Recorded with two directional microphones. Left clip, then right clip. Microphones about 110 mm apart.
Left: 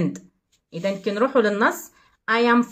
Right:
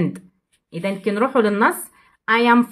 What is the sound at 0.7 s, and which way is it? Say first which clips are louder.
Speech: right 2 dB; 30° right (ahead or behind).